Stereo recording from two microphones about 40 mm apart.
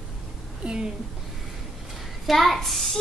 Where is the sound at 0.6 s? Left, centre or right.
Right.